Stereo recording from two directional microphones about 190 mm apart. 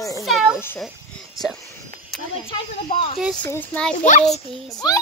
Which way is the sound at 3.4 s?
10° left (ahead or behind).